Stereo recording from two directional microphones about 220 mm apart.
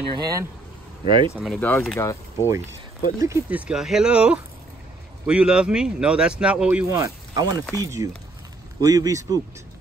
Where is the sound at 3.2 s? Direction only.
10° right (ahead or behind).